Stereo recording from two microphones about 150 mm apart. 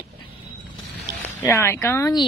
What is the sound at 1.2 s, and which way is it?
A woman's voice, 15° left (ahead or behind).